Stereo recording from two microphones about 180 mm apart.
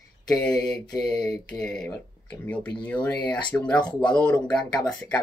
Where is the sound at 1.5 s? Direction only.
5° left (ahead or behind).